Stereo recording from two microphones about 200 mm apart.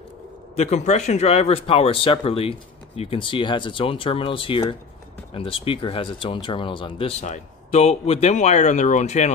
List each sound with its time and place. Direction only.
0.6 s speech: 35° left (ahead or behind)